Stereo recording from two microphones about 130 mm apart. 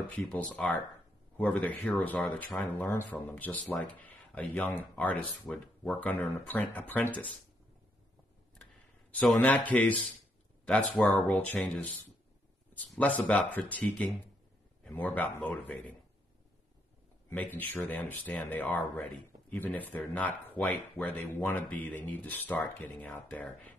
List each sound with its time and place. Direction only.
0.2 s speech: 5° left (ahead or behind)
3.6 s a man's voice: centre (ahead or behind)
3.9 s speech: 10° left (ahead or behind)
9.2 s a man's voice: centre (ahead or behind)
17.3 s speech: 15° left (ahead or behind)